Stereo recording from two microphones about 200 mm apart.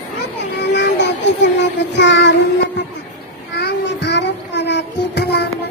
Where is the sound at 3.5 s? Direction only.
60° left (ahead or behind).